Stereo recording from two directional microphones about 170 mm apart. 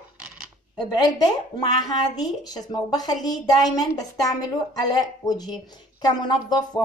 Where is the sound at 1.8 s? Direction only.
25° left (ahead or behind).